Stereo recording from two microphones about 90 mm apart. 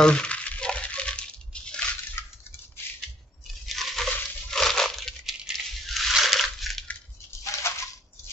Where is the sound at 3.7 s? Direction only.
Centre (ahead or behind).